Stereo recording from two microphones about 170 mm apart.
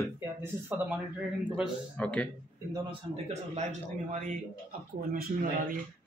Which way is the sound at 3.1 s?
40° right (ahead or behind).